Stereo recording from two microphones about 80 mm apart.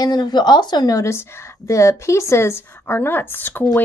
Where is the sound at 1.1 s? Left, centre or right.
Left.